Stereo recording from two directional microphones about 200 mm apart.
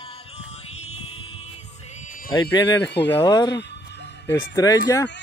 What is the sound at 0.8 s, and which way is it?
Music, 30° left (ahead or behind).